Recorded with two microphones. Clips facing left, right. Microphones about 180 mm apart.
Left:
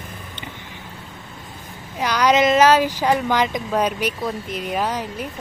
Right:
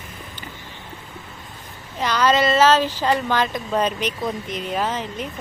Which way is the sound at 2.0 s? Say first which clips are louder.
Left 2 dB; 10° left (ahead or behind).